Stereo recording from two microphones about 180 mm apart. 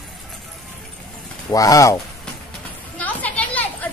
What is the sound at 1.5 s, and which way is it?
Speech, 20° left (ahead or behind).